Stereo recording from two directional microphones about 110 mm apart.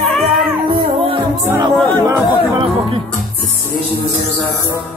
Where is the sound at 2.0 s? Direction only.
30° right (ahead or behind).